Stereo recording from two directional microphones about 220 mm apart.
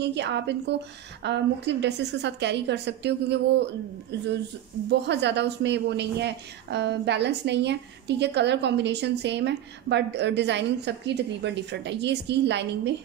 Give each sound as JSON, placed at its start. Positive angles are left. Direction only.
{"t": 0.0, "sound": "a woman's voice", "side_deg": -50}
{"t": 4.8, "sound": "a woman's voice", "side_deg": -50}